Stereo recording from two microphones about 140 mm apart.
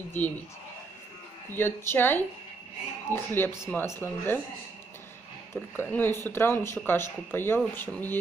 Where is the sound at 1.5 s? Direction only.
15° left (ahead or behind).